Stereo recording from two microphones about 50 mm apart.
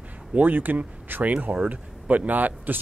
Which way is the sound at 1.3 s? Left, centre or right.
Right.